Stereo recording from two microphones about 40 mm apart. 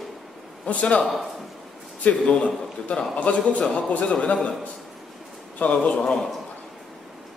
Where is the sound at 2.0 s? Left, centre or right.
Left.